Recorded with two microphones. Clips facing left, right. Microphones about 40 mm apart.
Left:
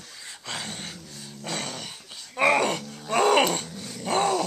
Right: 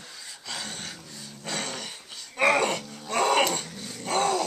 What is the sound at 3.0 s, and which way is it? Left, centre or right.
Music, centre.